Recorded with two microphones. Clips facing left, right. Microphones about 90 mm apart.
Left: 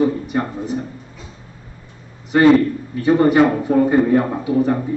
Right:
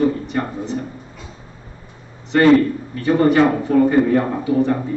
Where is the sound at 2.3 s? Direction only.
15° left (ahead or behind).